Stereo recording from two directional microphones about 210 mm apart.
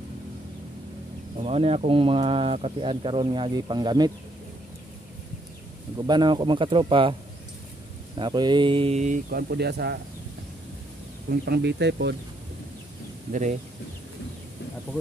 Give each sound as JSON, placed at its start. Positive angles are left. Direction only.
{"t": 1.4, "sound": "speech", "side_deg": -30}
{"t": 5.9, "sound": "speech", "side_deg": -20}
{"t": 8.2, "sound": "speech", "side_deg": -20}
{"t": 11.4, "sound": "speech", "side_deg": -50}
{"t": 13.3, "sound": "speech", "side_deg": -35}